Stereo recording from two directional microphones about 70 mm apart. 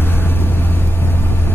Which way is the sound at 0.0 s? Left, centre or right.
Left.